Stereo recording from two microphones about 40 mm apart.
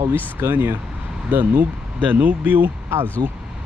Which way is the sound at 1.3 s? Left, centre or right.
Right.